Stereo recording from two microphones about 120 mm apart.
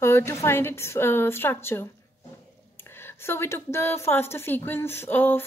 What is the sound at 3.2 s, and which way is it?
A woman's voice, 20° left (ahead or behind).